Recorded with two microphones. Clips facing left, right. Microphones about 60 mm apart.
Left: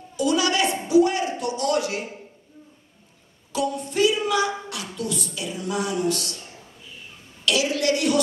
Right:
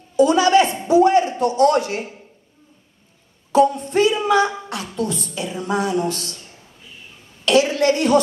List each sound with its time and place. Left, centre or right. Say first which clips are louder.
0.1 s a woman's voice: right 8 dB; right
3.5 s a woman's voice: right 9 dB; right
7.4 s a woman's voice: right 6 dB; right